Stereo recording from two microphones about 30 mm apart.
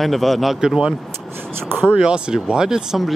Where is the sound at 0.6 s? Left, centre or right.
Right.